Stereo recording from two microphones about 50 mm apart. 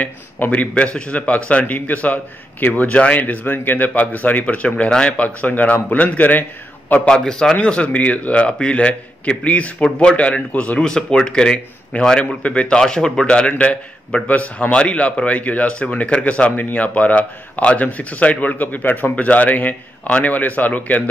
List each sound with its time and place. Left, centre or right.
0.5 s a man's voice: left
7.1 s a man's voice: centre
10.8 s speech: centre
13.3 s a man's voice: left